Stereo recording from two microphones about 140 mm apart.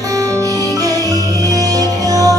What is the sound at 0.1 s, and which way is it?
Music, 25° right (ahead or behind).